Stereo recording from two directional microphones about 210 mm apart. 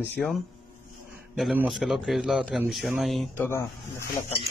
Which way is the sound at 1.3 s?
Centre (ahead or behind).